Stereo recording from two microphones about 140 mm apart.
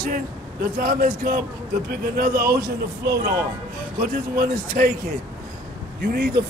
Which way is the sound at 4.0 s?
70° right (ahead or behind).